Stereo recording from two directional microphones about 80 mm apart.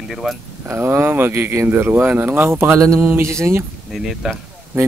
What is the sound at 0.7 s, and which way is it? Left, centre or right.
A man's voice, right.